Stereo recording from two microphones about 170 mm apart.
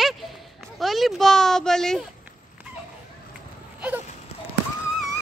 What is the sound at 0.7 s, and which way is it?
Speech, centre (ahead or behind).